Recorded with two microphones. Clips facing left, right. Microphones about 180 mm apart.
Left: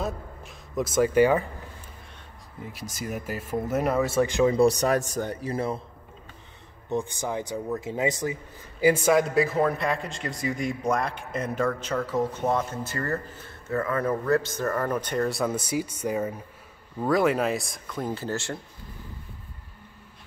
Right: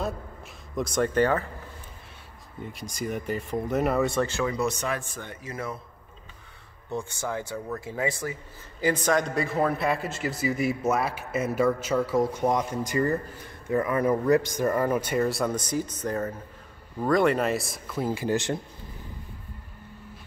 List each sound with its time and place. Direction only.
0.7 s speech: 5° left (ahead or behind)
2.6 s speech: centre (ahead or behind)
4.3 s speech: 20° left (ahead or behind)
4.6 s a man's voice: 35° left (ahead or behind)
6.9 s speech: 20° left (ahead or behind)
8.8 s a man's voice: 10° left (ahead or behind); by 18.6 s 15° right (ahead or behind)